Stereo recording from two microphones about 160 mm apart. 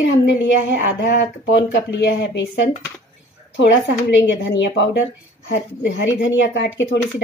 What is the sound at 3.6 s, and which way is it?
A woman's voice, 90° left.